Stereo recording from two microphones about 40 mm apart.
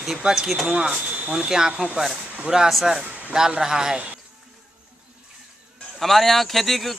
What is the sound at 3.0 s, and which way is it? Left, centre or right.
A man's voice, right.